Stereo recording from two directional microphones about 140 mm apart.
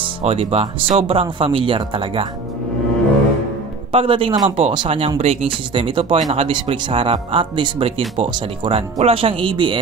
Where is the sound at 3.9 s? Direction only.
40° right (ahead or behind).